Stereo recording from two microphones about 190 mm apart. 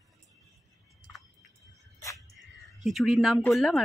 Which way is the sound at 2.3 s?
Centre (ahead or behind).